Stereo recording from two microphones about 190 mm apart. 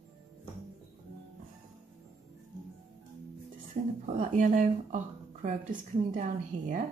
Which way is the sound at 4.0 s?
40° right (ahead or behind).